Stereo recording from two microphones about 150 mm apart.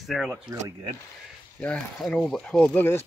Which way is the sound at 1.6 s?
5° left (ahead or behind).